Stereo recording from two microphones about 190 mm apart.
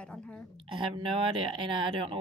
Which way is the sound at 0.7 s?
25° right (ahead or behind).